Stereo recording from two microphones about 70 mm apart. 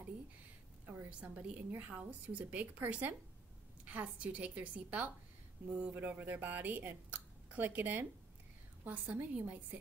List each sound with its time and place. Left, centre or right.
1.2 s a woman's voice: centre